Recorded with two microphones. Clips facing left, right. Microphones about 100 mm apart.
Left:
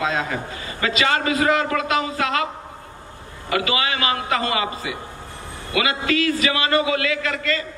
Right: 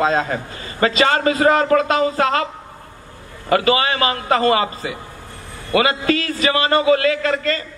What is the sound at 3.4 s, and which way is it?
Speech, 40° right (ahead or behind).